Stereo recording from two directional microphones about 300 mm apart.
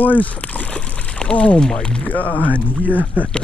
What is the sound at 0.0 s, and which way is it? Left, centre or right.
Speech, centre.